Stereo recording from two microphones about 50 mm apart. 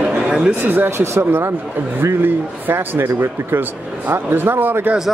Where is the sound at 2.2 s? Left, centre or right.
Right.